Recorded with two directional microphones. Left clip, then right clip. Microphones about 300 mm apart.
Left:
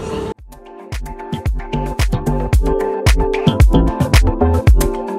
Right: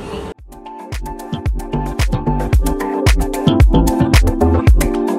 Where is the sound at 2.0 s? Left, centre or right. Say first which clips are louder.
Right 1 dB; centre.